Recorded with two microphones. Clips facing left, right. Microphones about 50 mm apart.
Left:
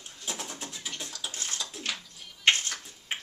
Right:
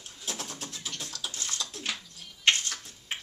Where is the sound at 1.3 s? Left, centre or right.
Left.